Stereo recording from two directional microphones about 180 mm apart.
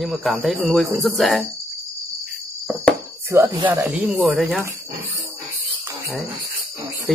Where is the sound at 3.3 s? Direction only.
15° right (ahead or behind).